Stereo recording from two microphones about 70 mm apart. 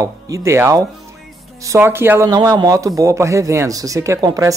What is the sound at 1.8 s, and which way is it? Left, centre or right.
Speech, right.